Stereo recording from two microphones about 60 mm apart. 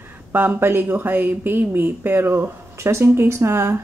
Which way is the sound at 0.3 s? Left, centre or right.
Right.